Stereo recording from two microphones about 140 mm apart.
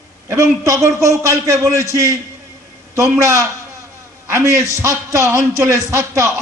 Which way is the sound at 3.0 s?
20° right (ahead or behind).